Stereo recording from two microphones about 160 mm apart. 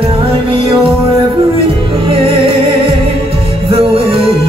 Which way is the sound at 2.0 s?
35° right (ahead or behind).